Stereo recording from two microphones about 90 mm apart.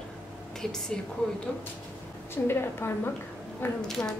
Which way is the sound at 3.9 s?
5° left (ahead or behind).